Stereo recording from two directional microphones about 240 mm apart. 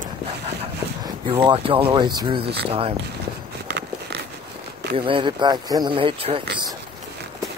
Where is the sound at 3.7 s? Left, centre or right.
Right.